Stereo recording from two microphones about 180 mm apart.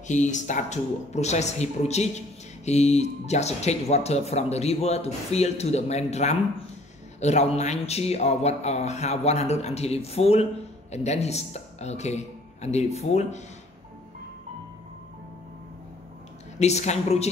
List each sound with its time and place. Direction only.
0.1 s speech: 40° left (ahead or behind)
16.5 s speech: 40° left (ahead or behind)